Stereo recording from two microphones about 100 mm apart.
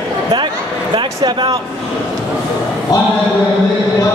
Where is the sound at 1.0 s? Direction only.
55° right (ahead or behind).